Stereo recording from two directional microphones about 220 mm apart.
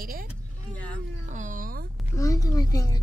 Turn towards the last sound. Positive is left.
turn(degrees=15)  # may be behind; listen again after turning